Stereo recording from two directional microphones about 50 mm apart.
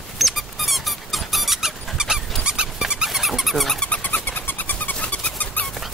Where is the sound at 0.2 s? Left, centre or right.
Centre.